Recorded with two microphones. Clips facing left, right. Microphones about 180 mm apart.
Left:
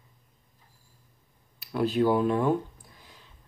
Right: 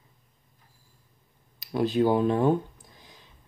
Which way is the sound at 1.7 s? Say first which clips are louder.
Right 1 dB; 20° right (ahead or behind).